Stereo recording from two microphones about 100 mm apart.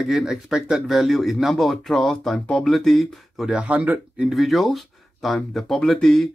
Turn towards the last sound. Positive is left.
turn(degrees=5)  # may be behind; listen again after turning